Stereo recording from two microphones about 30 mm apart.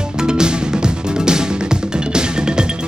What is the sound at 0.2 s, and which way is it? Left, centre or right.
Music, right.